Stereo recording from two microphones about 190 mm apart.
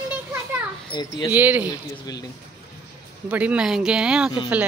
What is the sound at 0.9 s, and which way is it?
Speech, 25° left (ahead or behind).